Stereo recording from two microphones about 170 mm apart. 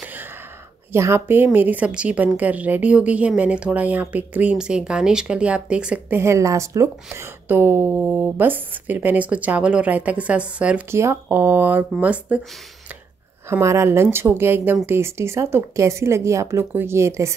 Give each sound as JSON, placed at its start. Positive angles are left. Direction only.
{"t": 0.9, "sound": "a woman's voice", "side_deg": -15}
{"t": 13.5, "sound": "a woman's voice", "side_deg": -15}